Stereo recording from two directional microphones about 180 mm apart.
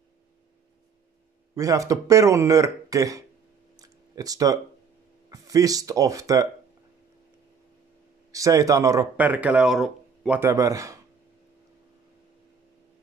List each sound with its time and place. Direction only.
1.5 s speech: 20° right (ahead or behind)
3.7 s a sound: 20° right (ahead or behind)
5.3 s speech: 20° right (ahead or behind)
8.3 s speech: 20° right (ahead or behind)